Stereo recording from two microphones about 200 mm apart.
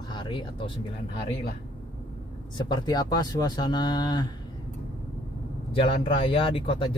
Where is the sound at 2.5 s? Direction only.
20° left (ahead or behind).